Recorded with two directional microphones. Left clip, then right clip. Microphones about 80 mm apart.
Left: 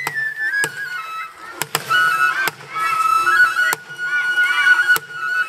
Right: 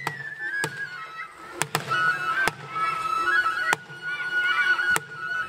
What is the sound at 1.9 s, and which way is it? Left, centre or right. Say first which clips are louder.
Music: left 9 dB; left.